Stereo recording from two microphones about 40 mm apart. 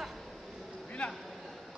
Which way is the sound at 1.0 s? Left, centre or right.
Left.